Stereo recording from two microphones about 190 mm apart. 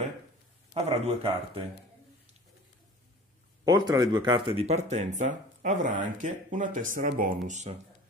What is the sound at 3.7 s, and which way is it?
Speech, 20° right (ahead or behind).